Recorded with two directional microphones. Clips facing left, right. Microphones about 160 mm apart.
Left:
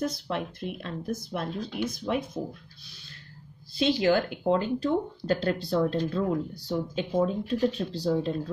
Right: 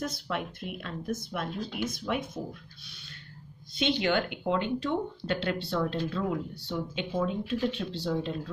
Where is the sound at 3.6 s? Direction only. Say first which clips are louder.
Left 4 dB; 35° left (ahead or behind).